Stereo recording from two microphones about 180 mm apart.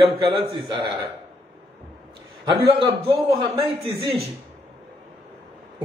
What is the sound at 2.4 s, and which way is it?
A man's voice, 30° right (ahead or behind).